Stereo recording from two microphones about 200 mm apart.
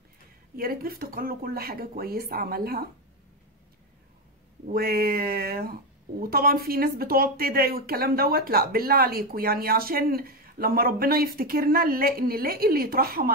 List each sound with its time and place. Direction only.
0.6 s speech: 50° right (ahead or behind)
4.6 s speech: 50° right (ahead or behind)